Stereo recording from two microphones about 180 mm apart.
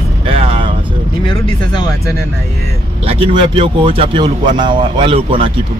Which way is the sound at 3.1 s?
30° right (ahead or behind).